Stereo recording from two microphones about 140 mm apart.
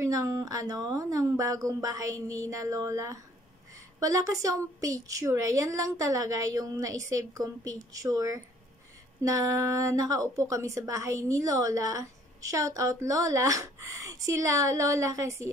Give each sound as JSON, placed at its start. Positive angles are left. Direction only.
{"t": 0.0, "sound": "a woman's voice", "side_deg": -20}